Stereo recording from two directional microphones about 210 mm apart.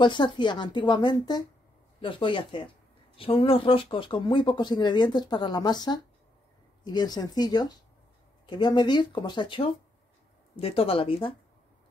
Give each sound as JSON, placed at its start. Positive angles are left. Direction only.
{"t": 0.0, "sound": "speech", "side_deg": 20}